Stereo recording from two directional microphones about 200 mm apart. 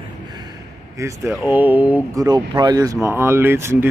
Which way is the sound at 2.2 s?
20° right (ahead or behind).